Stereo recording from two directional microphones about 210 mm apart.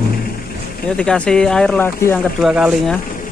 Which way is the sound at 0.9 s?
5° left (ahead or behind).